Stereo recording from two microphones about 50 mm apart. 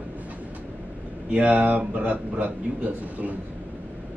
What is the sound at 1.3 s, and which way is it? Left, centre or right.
Speech, right.